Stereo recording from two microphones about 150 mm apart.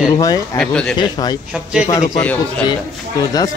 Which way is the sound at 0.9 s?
30° left (ahead or behind).